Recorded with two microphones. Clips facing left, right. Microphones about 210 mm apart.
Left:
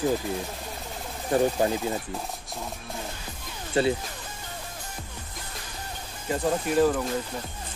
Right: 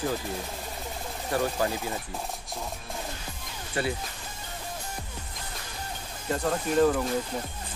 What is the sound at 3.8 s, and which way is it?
Speech, 25° left (ahead or behind).